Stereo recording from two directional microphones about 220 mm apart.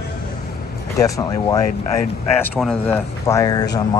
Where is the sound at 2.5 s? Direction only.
Centre (ahead or behind); by 4.0 s 20° left (ahead or behind).